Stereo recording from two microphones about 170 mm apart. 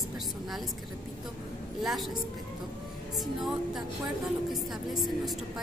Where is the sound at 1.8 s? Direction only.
Centre (ahead or behind).